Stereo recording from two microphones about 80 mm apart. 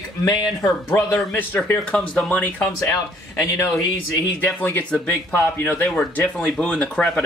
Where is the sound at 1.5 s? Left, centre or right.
Centre.